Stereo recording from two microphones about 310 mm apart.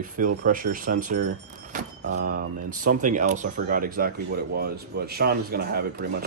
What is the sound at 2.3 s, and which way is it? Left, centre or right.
Speech, right.